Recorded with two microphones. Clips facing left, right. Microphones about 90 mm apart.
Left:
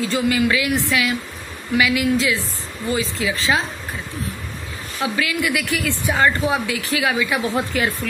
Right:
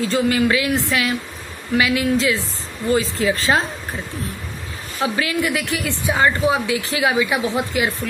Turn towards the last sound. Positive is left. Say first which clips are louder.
# right 1 dB
turn(degrees=-20)  # may be behind; listen again after turning